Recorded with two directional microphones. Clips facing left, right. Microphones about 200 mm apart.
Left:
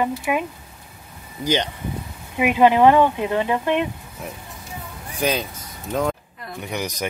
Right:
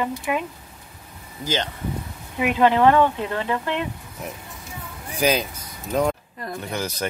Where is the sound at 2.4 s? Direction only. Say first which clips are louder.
Left 3 dB; 15° left (ahead or behind).